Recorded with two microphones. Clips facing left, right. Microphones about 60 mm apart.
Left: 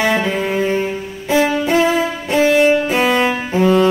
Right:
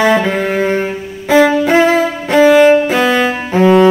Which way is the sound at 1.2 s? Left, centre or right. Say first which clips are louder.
Right 6 dB; right.